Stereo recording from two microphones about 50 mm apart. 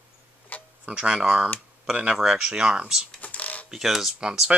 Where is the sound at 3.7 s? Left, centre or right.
Centre.